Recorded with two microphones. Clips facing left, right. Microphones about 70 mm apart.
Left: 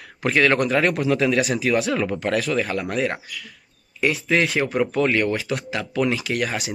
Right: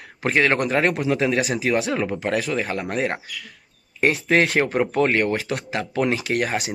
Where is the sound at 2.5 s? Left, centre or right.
Right.